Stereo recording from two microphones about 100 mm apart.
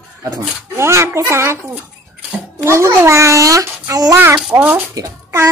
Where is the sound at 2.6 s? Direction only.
30° right (ahead or behind).